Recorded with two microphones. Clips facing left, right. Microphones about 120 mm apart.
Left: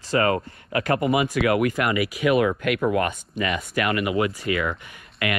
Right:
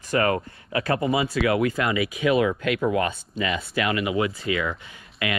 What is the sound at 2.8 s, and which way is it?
Speech, 45° left (ahead or behind).